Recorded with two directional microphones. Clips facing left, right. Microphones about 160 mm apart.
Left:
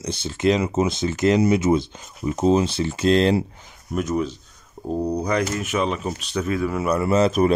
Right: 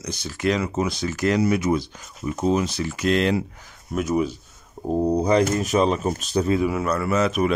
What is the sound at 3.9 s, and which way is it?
Speech, 5° right (ahead or behind).